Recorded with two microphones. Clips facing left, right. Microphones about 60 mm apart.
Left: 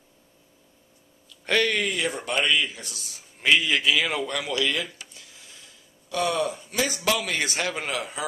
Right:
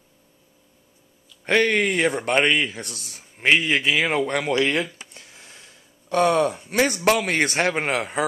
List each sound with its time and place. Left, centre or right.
1.4 s speech: right
5.1 s a sound: right
6.0 s a man's voice: right